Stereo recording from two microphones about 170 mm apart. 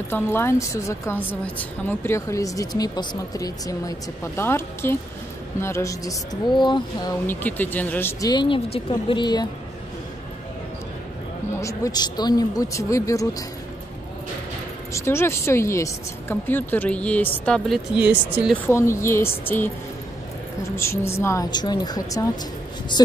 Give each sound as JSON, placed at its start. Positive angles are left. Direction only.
{"t": 0.1, "sound": "a woman's voice", "side_deg": 15}
{"t": 7.2, "sound": "a woman's voice", "side_deg": 10}
{"t": 8.3, "sound": "speech", "side_deg": 25}
{"t": 11.5, "sound": "speech", "side_deg": 20}
{"t": 14.9, "sound": "a woman's voice", "side_deg": 15}
{"t": 17.9, "sound": "speech", "side_deg": -5}
{"t": 18.7, "sound": "a woman's voice", "side_deg": 15}
{"t": 20.7, "sound": "speech", "side_deg": 15}